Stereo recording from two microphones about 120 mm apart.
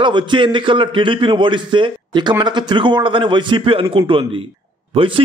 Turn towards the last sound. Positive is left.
turn(degrees=-45)  # may be behind; listen again after turning